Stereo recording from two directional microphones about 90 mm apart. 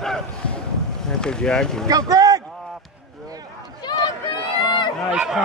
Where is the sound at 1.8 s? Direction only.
45° right (ahead or behind).